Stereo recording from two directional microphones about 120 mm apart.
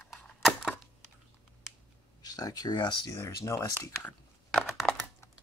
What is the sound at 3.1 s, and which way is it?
Speech, 20° left (ahead or behind).